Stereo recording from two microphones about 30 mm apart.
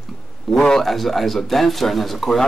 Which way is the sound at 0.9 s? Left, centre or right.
Centre.